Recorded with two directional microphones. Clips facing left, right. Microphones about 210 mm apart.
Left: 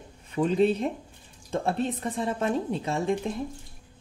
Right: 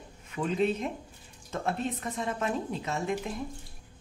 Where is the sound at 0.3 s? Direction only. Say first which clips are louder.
Left 5 dB; 35° left (ahead or behind).